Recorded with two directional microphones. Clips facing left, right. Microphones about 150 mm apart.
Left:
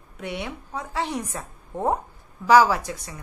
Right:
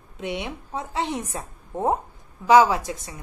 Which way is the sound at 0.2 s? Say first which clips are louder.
Right 2 dB; 20° right (ahead or behind).